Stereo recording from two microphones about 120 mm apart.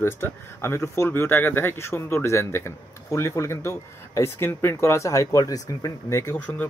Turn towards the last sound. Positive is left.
turn(degrees=15)  # may be behind; listen again after turning